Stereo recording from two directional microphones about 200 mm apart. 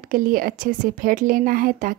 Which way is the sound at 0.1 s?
45° right (ahead or behind).